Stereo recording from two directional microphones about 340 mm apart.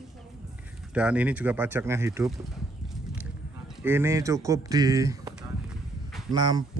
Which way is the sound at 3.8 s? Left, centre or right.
Centre.